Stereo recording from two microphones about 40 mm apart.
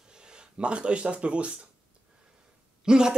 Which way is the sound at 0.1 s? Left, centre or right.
Right.